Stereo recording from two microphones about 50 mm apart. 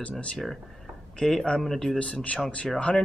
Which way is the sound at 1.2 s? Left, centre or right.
Centre.